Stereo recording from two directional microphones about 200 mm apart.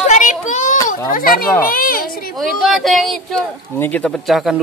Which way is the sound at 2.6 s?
Centre (ahead or behind).